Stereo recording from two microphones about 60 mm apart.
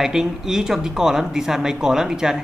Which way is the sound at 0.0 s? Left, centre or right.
Centre.